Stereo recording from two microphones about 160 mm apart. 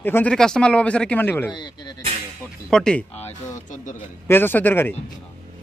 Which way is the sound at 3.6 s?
55° left (ahead or behind).